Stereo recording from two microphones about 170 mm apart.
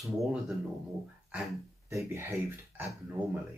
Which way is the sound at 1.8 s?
15° right (ahead or behind).